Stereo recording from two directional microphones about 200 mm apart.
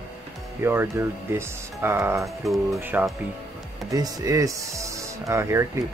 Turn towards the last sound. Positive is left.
turn(degrees=-15)  # may be behind; listen again after turning